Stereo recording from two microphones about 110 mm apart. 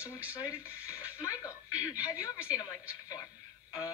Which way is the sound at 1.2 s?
30° left (ahead or behind).